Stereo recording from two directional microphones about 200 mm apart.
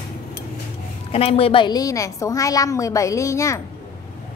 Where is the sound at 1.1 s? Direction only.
30° left (ahead or behind); by 3.6 s 15° left (ahead or behind).